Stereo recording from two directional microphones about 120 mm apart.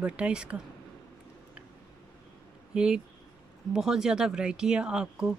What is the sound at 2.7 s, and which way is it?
Speech, 5° right (ahead or behind).